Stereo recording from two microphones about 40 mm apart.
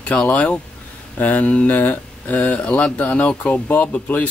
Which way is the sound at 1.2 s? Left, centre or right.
Left.